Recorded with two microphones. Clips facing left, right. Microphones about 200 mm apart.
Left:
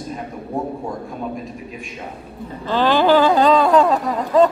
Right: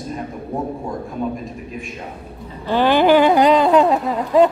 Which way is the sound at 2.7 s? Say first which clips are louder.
Right 1 dB; 15° right (ahead or behind).